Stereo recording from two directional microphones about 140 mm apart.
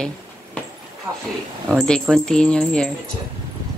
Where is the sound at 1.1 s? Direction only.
15° right (ahead or behind).